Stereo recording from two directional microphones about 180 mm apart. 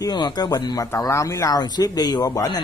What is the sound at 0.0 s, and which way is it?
Speech, 20° left (ahead or behind).